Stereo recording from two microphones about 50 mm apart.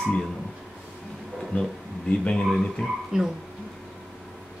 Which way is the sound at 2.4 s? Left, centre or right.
Centre.